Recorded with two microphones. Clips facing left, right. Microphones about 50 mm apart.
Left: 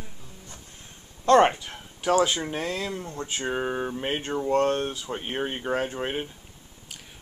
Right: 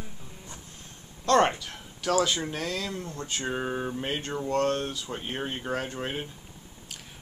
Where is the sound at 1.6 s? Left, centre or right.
Left.